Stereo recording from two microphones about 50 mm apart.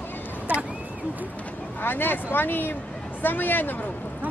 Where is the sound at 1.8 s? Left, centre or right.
Left.